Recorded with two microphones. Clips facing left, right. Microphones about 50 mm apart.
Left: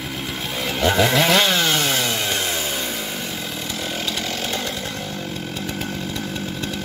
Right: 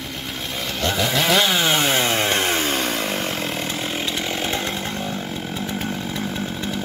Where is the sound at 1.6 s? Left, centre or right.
Right.